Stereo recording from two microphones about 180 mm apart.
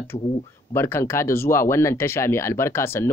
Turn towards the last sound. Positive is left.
turn(degrees=15)  # may be behind; listen again after turning